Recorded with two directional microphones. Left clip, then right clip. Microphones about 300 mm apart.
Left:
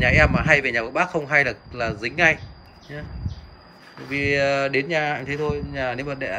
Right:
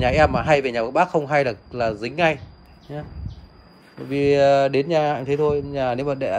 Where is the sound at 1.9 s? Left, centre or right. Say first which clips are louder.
Right 2 dB; right.